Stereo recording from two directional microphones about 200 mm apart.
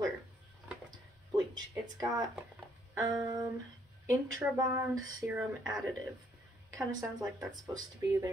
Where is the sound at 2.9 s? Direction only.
15° right (ahead or behind).